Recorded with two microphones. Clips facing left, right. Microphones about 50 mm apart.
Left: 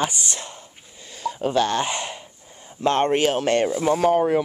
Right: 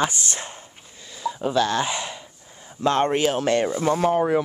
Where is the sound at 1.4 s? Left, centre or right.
Left.